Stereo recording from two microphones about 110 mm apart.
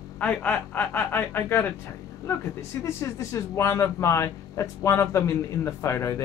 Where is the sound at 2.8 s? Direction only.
30° left (ahead or behind).